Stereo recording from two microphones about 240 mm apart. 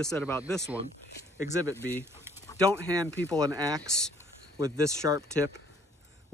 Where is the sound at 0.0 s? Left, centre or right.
Centre.